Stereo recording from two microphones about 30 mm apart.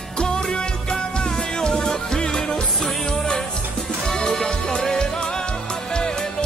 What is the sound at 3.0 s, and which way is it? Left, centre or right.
Music, left.